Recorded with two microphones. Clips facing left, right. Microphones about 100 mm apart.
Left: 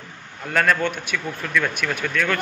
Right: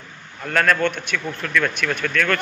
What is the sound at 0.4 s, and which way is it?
A man's voice, 5° left (ahead or behind).